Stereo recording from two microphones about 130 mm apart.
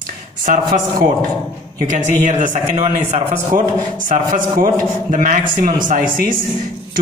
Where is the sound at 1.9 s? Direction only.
75° right (ahead or behind).